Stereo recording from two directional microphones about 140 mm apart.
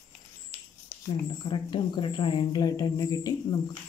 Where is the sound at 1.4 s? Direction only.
35° left (ahead or behind).